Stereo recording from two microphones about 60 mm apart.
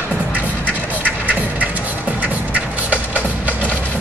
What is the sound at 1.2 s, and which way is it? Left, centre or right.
Music, right.